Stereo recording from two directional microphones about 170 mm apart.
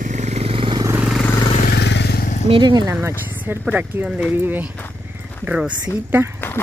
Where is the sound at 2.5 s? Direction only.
25° right (ahead or behind).